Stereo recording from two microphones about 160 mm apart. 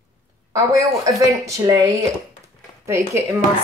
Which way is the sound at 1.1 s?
20° right (ahead or behind).